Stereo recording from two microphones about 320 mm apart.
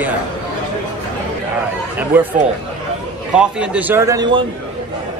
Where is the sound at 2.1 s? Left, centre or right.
Centre.